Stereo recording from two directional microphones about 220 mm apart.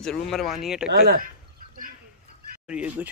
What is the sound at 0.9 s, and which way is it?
Speech, 45° right (ahead or behind).